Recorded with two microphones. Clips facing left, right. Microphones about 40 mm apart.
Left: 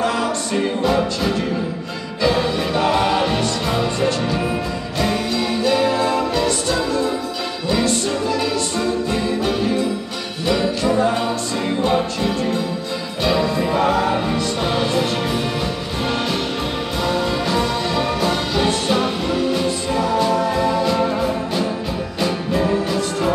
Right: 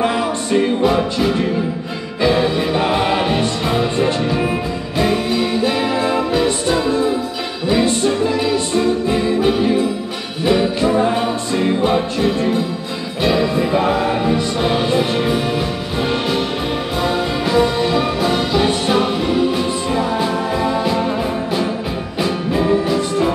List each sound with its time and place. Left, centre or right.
0.0 s music: right
0.8 s music: centre
22.2 s music: right